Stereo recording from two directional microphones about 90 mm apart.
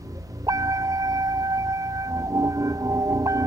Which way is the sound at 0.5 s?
40° right (ahead or behind).